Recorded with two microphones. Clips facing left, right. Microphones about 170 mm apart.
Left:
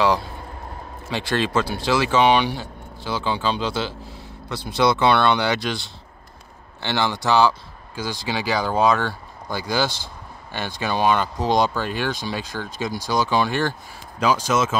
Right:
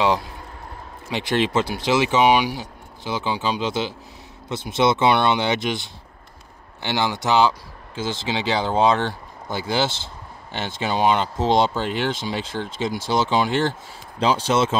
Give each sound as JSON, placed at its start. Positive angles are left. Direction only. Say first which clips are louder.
{"t": 1.1, "sound": "speech", "louder": "right 1 dB", "side_deg": -20}